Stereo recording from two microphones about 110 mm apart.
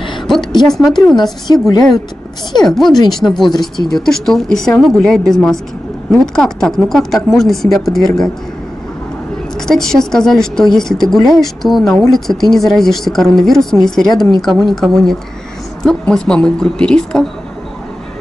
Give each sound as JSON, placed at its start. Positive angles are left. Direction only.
{"t": 0.3, "sound": "a woman's voice", "side_deg": 0}
{"t": 1.5, "sound": "a woman's voice", "side_deg": 40}
{"t": 2.6, "sound": "a woman's voice", "side_deg": 5}
{"t": 9.6, "sound": "a woman's voice", "side_deg": 5}